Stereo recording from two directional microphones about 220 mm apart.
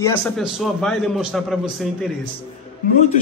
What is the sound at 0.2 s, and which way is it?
A man's voice, centre (ahead or behind).